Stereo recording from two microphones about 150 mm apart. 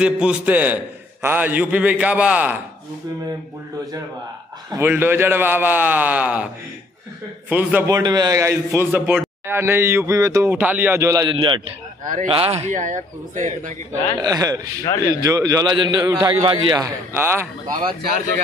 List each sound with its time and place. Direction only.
0.0 s a man's voice: 5° right (ahead or behind)
4.6 s a man's voice: 15° right (ahead or behind)
7.8 s a man's voice: 25° right (ahead or behind)
11.3 s a man's voice: 30° right (ahead or behind); by 13.5 s 55° right (ahead or behind)
14.2 s a man's voice: 25° right (ahead or behind)
14.9 s speech: 25° left (ahead or behind)
15.2 s a man's voice: 25° right (ahead or behind)
17.1 s a man's voice: 15° right (ahead or behind)